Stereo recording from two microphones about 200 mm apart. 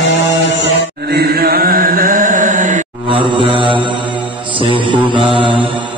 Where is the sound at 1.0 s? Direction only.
55° right (ahead or behind).